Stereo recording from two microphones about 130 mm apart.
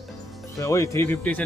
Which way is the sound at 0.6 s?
25° left (ahead or behind).